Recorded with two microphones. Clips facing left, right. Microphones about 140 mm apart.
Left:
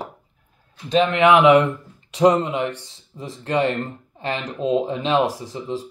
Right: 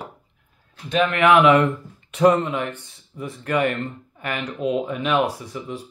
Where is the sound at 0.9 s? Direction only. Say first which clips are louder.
Left 2 dB; 25° left (ahead or behind).